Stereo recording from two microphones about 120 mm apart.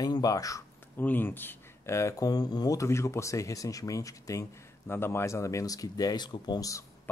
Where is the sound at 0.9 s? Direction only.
15° left (ahead or behind); by 6.8 s 35° left (ahead or behind).